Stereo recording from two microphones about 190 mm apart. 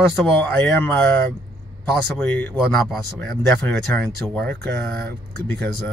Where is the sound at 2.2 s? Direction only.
10° left (ahead or behind).